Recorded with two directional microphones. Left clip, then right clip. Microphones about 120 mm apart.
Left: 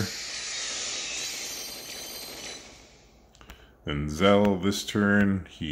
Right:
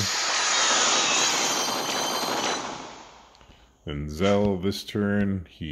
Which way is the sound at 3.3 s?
40° right (ahead or behind).